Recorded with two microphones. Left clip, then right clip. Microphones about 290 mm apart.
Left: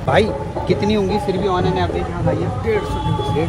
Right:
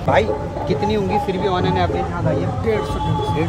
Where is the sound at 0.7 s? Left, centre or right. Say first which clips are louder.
Left 2 dB; centre.